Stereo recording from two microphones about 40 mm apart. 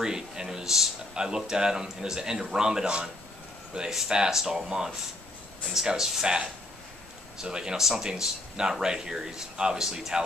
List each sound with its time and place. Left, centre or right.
0.0 s speech: centre
3.7 s speech: centre
7.4 s speech: centre